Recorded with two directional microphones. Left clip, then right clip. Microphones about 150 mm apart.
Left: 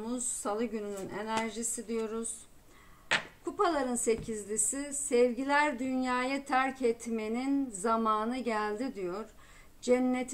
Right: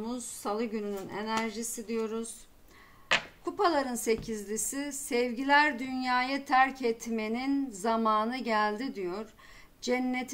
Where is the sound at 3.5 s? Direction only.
40° right (ahead or behind).